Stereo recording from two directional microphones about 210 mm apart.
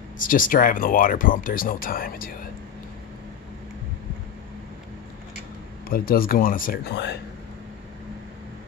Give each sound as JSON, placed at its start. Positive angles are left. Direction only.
{"t": 0.2, "sound": "speech", "side_deg": 40}
{"t": 5.9, "sound": "speech", "side_deg": 45}